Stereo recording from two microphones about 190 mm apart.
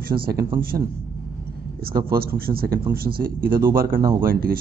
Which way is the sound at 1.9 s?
50° right (ahead or behind).